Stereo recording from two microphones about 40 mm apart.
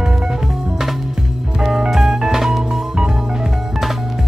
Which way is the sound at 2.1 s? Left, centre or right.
Centre.